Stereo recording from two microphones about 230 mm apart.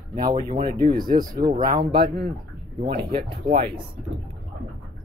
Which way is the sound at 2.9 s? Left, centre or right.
Right.